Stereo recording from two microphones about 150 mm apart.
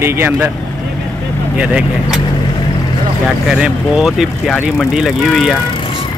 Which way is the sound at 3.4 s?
5° right (ahead or behind).